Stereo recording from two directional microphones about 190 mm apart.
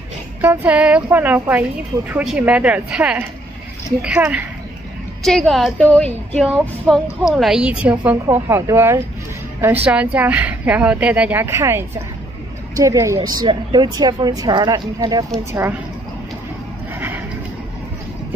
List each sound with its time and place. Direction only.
0.4 s a woman's voice: 10° right (ahead or behind)
16.9 s neigh: 10° right (ahead or behind)